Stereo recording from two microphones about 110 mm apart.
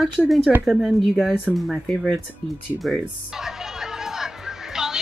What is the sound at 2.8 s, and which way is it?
Music, centre (ahead or behind).